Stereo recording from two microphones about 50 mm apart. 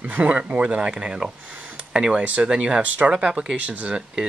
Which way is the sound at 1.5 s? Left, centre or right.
Right.